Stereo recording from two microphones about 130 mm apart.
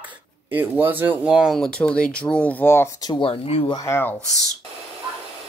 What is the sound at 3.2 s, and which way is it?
Speech, 45° left (ahead or behind).